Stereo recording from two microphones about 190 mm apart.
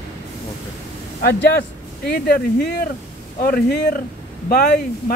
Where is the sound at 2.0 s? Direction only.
55° left (ahead or behind).